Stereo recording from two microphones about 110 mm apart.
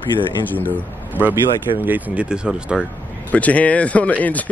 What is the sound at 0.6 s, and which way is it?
Speech, 15° right (ahead or behind).